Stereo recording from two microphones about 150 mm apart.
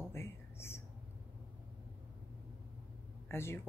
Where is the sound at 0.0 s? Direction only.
15° left (ahead or behind).